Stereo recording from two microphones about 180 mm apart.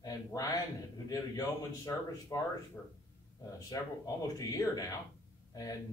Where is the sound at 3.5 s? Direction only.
20° left (ahead or behind).